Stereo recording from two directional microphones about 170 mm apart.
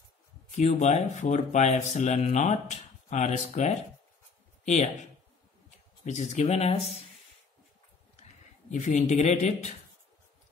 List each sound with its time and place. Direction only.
0.6 s speech: 40° left (ahead or behind)
6.0 s speech: 45° left (ahead or behind)
8.2 s speech: 45° left (ahead or behind)